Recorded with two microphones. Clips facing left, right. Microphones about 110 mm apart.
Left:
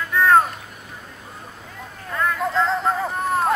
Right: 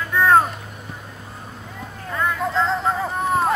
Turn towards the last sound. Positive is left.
turn(degrees=0)  # may be behind; listen again after turning